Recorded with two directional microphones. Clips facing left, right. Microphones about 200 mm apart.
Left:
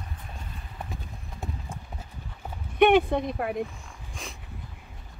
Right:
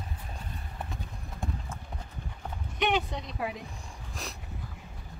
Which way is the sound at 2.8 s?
55° left (ahead or behind).